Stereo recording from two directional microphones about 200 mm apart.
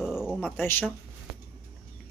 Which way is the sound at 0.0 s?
5° right (ahead or behind).